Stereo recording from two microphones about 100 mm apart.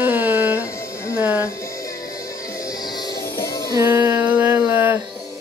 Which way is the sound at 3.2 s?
25° left (ahead or behind).